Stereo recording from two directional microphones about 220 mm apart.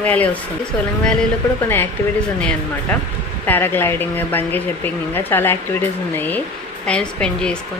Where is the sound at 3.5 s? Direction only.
10° left (ahead or behind).